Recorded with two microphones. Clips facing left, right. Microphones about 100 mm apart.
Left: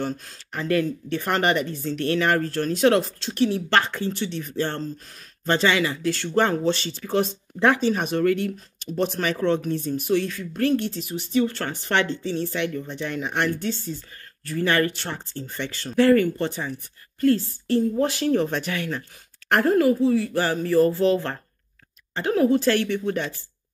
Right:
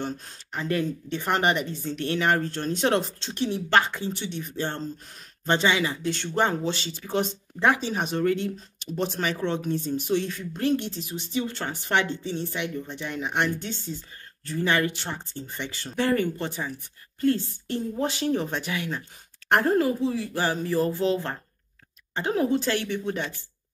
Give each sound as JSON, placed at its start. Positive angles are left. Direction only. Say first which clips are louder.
{"t": 0.0, "sound": "speech", "louder": "left 3 dB", "side_deg": -25}